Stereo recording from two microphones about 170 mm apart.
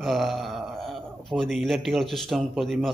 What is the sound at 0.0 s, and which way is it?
Speech, centre (ahead or behind).